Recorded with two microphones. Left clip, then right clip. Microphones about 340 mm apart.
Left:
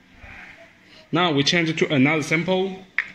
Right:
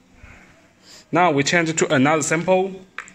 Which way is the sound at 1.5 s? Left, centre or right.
Right.